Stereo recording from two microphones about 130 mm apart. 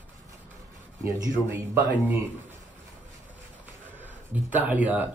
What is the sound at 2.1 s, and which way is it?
Speech, 15° right (ahead or behind).